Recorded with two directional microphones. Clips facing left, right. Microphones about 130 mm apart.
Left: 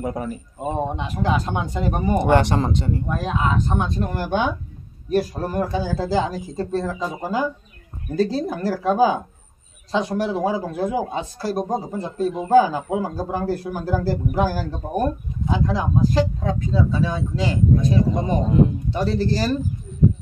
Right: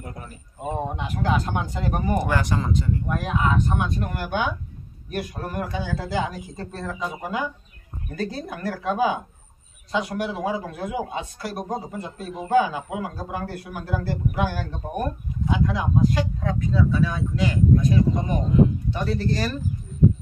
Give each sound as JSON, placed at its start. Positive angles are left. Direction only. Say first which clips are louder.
{"t": 0.7, "sound": "speech", "louder": "left 3 dB", "side_deg": 20}
{"t": 2.4, "sound": "speech", "louder": "left 4 dB", "side_deg": 70}
{"t": 2.9, "sound": "a man's voice", "louder": "left 2 dB", "side_deg": 25}